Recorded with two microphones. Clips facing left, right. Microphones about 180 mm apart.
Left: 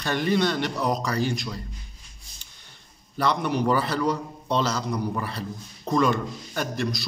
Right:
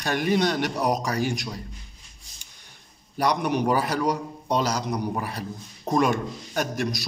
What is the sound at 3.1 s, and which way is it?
A man's voice, 15° right (ahead or behind).